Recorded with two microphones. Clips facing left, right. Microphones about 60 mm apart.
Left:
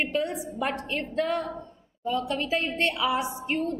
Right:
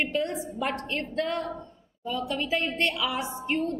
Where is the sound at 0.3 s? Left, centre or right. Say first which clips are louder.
Even; centre.